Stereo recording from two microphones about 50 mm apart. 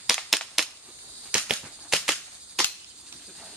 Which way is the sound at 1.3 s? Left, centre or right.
Centre.